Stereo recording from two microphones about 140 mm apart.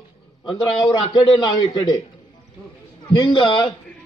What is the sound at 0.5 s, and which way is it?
A man's voice, 35° left (ahead or behind).